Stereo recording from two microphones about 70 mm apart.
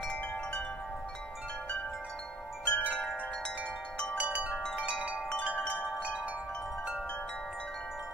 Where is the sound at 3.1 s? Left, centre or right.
Left.